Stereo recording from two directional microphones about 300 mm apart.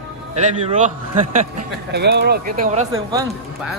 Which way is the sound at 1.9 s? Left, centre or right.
Right.